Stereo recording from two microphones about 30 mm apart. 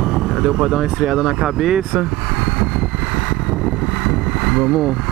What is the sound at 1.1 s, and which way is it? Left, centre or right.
Speech, centre.